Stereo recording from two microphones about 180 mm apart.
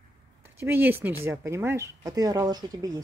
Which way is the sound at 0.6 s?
10° right (ahead or behind).